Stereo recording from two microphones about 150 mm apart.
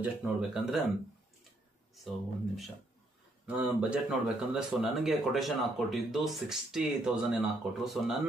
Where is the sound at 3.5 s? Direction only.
5° right (ahead or behind).